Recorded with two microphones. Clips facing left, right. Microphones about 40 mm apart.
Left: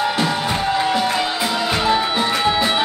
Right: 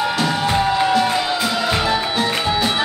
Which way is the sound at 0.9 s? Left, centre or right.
Centre.